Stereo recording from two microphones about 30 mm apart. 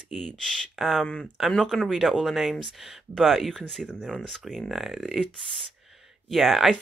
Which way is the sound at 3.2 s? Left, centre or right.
Centre.